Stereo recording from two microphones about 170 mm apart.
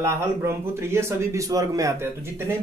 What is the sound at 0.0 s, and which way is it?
Speech, 15° right (ahead or behind).